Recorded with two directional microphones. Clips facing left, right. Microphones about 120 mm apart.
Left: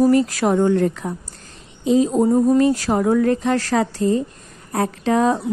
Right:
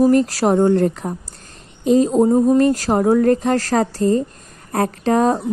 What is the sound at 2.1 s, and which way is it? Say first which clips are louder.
Speech: right 2 dB; 20° right (ahead or behind).